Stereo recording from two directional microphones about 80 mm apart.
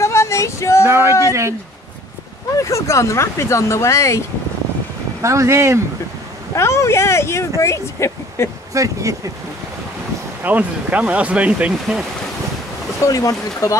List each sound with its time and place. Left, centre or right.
0.0 s female singing: left
0.8 s speech: right
2.5 s speech: left
5.2 s speech: right
6.5 s speech: left
8.7 s speech: right
10.4 s speech: centre
13.0 s speech: left